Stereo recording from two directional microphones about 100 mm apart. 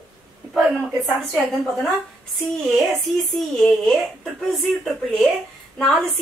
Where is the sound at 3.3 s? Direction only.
5° left (ahead or behind).